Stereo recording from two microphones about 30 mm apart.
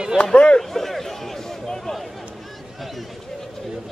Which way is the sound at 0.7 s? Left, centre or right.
Centre.